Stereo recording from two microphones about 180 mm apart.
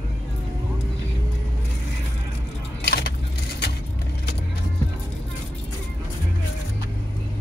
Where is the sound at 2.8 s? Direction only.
65° left (ahead or behind).